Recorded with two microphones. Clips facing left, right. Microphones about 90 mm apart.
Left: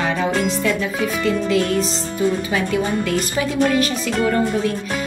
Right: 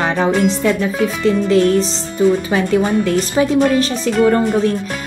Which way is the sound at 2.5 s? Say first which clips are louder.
Right 5 dB; 35° right (ahead or behind).